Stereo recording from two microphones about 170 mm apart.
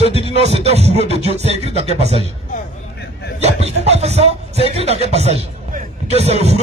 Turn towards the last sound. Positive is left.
turn(degrees=-40)  # may be behind; listen again after turning